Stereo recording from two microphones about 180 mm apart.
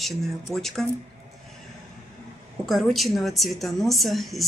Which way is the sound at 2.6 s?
Centre (ahead or behind).